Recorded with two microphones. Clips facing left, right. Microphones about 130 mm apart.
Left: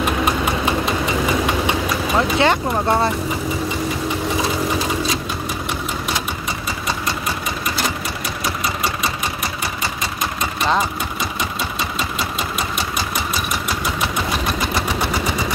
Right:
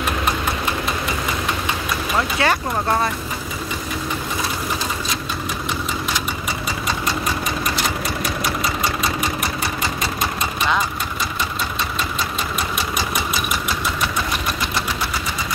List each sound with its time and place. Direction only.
2.1 s speech: 20° left (ahead or behind)